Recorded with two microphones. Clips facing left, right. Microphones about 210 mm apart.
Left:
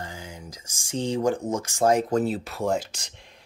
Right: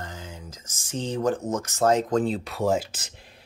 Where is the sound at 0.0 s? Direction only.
10° left (ahead or behind).